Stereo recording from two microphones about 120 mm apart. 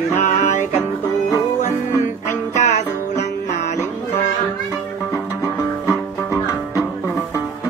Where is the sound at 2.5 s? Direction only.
80° left.